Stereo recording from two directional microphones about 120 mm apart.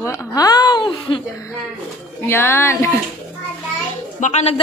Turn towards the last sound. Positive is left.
turn(degrees=70)  # may be behind; listen again after turning